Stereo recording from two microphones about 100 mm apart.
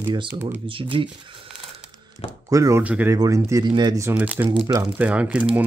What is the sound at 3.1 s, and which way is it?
Speech, 35° right (ahead or behind).